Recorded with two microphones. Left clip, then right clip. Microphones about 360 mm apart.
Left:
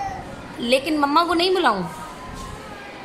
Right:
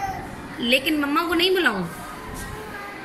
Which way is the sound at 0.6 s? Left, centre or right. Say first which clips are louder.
Left 2 dB; left.